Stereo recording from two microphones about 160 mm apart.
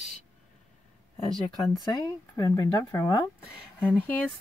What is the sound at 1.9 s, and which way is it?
Speech, 25° left (ahead or behind).